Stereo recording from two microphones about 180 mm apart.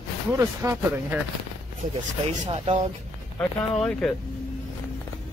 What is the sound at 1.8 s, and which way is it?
Speech, 45° right (ahead or behind).